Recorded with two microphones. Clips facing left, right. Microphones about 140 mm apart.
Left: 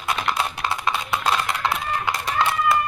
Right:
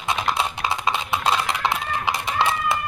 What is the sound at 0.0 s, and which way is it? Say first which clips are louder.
Music: right 1 dB; 20° right (ahead or behind).